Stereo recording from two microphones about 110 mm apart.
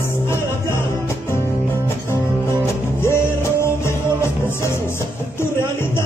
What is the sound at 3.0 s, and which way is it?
Music, 25° left (ahead or behind).